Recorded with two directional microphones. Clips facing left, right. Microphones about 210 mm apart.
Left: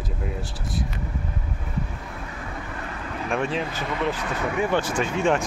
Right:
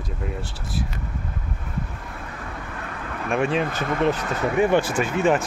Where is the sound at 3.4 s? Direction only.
55° right (ahead or behind).